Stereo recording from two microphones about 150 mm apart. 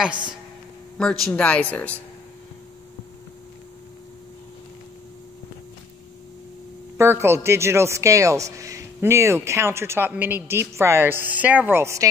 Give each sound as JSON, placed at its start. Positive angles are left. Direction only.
{"t": 0.1, "sound": "speech", "side_deg": -30}
{"t": 1.3, "sound": "speech", "side_deg": 10}
{"t": 7.0, "sound": "a man's voice", "side_deg": -15}